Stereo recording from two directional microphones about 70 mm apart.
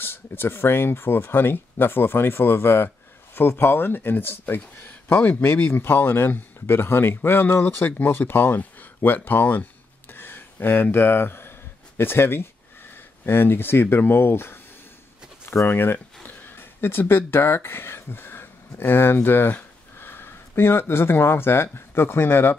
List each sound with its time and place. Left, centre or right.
0.0 s speech: left